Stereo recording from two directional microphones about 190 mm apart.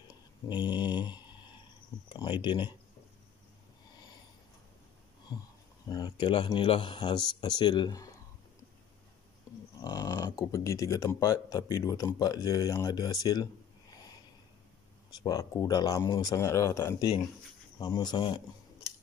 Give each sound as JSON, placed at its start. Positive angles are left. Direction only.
{"t": 0.1, "sound": "a sound", "side_deg": 20}
{"t": 2.0, "sound": "speech", "side_deg": 25}
{"t": 5.3, "sound": "speech", "side_deg": 20}
{"t": 9.8, "sound": "speech", "side_deg": 20}
{"t": 15.2, "sound": "speech", "side_deg": 20}